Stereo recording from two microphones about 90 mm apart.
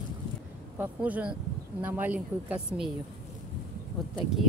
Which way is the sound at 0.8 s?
15° right (ahead or behind).